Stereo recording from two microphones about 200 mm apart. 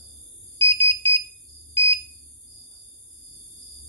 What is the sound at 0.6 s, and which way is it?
Alarm, 25° right (ahead or behind).